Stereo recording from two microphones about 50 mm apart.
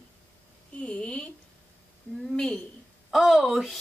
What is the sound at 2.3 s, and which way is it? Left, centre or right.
Speech, centre.